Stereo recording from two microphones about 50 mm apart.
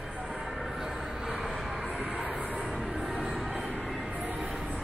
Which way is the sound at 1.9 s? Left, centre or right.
Right.